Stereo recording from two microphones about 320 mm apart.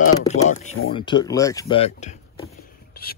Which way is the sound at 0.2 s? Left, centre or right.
Left.